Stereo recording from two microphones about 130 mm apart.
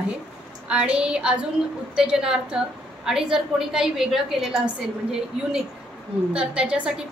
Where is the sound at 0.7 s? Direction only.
10° right (ahead or behind).